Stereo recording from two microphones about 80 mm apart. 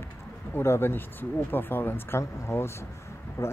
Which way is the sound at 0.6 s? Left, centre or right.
Left.